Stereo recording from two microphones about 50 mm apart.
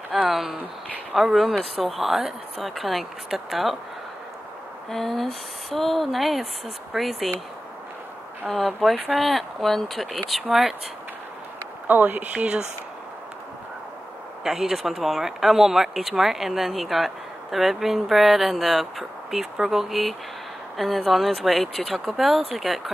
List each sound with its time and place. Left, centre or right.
0.3 s speech: centre
4.9 s speech: centre
8.5 s speech: centre
11.9 s speech: right
14.4 s speech: centre